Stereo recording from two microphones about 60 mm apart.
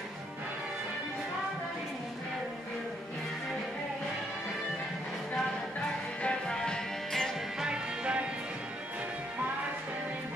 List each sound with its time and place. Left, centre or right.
6.2 s music: centre
7.6 s music: centre